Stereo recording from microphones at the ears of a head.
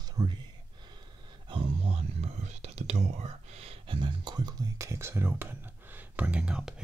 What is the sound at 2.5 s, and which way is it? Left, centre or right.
Speech, right.